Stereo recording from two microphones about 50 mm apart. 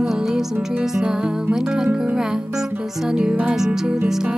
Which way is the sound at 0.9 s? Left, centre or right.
Centre.